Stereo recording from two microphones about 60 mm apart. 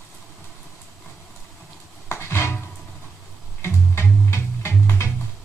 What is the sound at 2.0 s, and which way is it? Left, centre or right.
Music, left.